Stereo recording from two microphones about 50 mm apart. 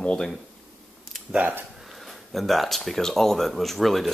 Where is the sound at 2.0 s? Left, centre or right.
Centre.